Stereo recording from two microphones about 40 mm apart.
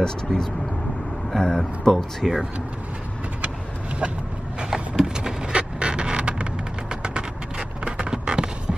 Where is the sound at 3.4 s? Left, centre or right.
Right.